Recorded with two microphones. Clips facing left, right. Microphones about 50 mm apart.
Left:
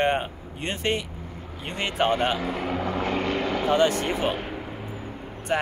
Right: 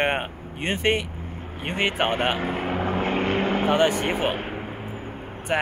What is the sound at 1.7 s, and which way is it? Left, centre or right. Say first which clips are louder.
Vehicle: right 1 dB; right.